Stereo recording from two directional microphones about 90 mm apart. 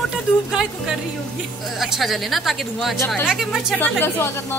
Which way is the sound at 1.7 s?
Centre (ahead or behind).